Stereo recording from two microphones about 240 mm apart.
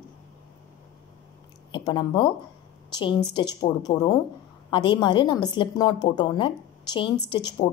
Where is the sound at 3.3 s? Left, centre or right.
Centre.